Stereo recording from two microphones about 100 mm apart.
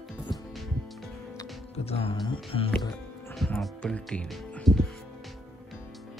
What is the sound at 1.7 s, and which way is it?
Music, 90° left.